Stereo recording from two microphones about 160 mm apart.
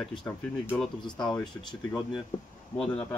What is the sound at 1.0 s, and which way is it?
Speech, 30° left (ahead or behind).